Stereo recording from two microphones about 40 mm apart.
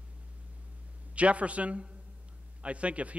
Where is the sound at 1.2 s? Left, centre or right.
Right.